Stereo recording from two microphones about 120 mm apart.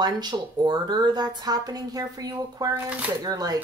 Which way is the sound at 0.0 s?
35° right (ahead or behind).